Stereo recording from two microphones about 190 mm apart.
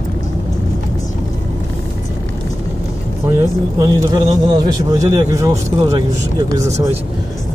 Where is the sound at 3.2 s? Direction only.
15° right (ahead or behind).